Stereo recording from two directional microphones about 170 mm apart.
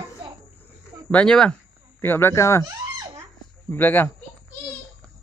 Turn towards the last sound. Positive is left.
turn(degrees=10)  # may be behind; listen again after turning